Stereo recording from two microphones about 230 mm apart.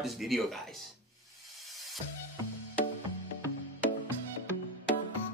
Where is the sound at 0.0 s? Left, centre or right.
Centre.